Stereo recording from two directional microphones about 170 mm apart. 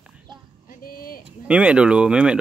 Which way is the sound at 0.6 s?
60° left (ahead or behind).